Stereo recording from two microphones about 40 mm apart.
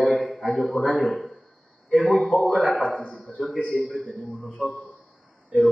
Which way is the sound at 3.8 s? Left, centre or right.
Centre.